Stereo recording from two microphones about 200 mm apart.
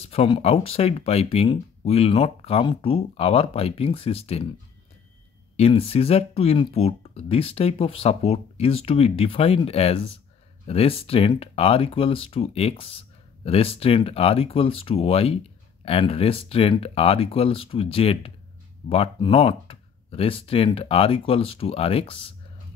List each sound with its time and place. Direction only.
0.1 s speech: 30° left (ahead or behind)
5.6 s speech: 30° left (ahead or behind)